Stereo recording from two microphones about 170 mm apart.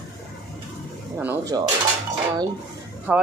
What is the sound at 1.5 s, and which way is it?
Speech, 20° right (ahead or behind).